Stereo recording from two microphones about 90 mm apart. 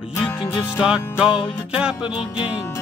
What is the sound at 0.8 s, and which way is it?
Music, 5° right (ahead or behind).